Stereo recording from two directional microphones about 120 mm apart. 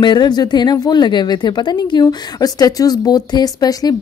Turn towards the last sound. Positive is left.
turn(degrees=30)  # may be behind; listen again after turning